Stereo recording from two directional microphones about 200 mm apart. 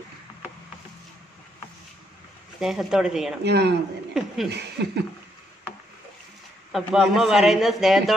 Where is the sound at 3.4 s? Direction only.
55° right (ahead or behind).